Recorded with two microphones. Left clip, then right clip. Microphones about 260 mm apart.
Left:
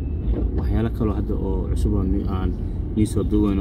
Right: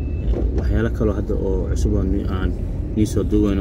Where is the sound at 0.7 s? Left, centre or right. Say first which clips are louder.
Right 4 dB; centre.